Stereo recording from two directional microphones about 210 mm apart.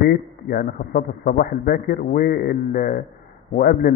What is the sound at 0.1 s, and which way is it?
A man's voice, 45° left (ahead or behind).